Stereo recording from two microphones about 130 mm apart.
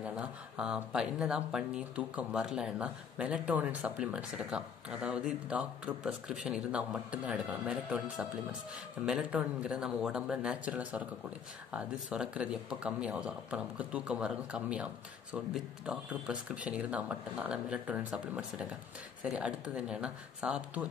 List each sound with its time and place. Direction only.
0.0 s speech: 10° right (ahead or behind)